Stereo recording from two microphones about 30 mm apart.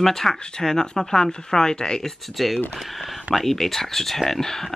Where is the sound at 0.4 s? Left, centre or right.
Left.